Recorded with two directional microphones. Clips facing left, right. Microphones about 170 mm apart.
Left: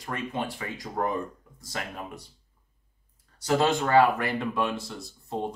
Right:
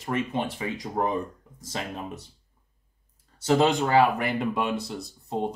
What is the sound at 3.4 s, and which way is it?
Speech, 15° right (ahead or behind).